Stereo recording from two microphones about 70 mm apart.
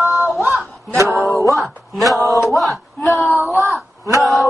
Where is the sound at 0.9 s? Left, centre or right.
Right.